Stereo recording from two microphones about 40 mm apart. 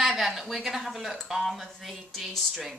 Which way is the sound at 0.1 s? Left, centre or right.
Centre.